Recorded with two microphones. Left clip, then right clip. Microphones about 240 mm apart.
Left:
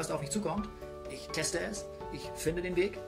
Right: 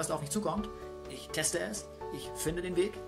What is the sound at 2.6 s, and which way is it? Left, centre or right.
Speech, right.